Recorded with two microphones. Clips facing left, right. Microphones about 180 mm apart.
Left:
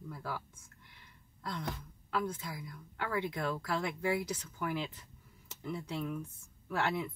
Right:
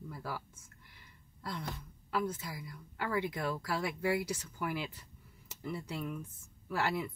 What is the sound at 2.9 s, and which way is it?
A woman's voice, 5° right (ahead or behind).